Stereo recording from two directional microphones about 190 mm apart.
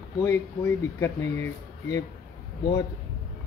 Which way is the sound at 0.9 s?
15° left (ahead or behind).